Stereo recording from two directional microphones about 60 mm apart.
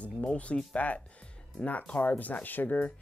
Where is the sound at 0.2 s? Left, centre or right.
Left.